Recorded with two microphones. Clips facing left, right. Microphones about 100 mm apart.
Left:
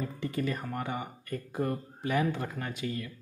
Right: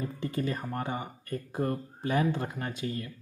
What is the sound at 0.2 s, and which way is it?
Speech, 30° right (ahead or behind).